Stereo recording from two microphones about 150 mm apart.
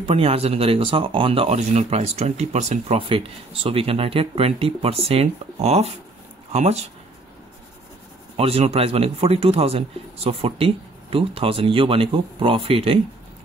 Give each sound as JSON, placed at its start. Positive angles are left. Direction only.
{"t": 0.0, "sound": "a man's voice", "side_deg": -40}
{"t": 8.4, "sound": "a man's voice", "side_deg": -40}